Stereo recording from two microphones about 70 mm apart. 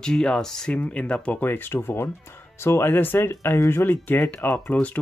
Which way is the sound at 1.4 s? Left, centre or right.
Left.